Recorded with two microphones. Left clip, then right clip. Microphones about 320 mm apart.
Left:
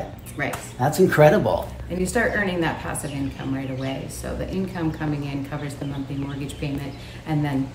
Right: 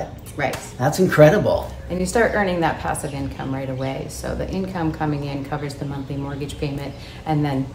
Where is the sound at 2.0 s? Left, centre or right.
Centre.